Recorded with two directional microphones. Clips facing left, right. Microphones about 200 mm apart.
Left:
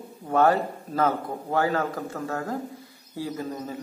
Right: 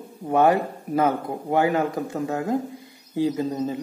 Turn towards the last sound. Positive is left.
turn(degrees=-25)  # may be behind; listen again after turning